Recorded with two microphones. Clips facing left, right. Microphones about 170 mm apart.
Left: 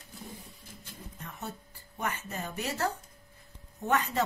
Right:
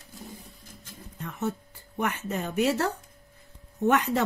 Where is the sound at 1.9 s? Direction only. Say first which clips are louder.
Right 6 dB; 70° right (ahead or behind).